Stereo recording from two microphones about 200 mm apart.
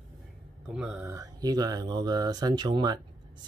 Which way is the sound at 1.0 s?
15° right (ahead or behind).